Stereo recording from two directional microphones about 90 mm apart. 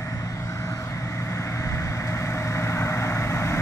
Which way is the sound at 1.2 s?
35° left (ahead or behind).